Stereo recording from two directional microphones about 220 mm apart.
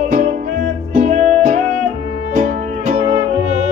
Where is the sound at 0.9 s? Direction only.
35° right (ahead or behind).